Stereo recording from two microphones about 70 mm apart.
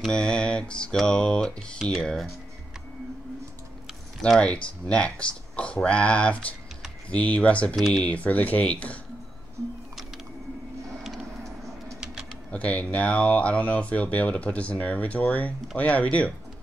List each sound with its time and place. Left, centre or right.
0.1 s speech: centre
4.4 s speech: centre
7.7 s speech: centre
8.0 s speech: left
12.4 s speech: centre